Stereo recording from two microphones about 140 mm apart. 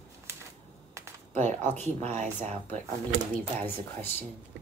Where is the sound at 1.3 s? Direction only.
60° right (ahead or behind).